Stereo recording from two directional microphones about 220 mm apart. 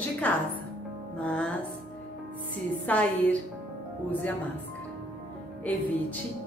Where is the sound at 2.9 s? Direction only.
5° left (ahead or behind).